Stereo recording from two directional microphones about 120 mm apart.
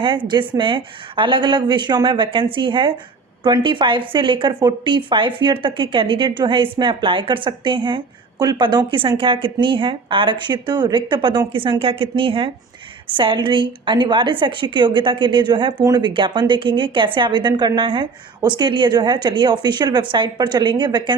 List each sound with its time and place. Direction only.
0.3 s a woman's voice: 40° right (ahead or behind)